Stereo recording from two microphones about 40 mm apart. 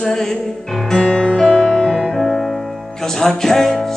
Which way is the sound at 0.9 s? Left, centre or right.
Left.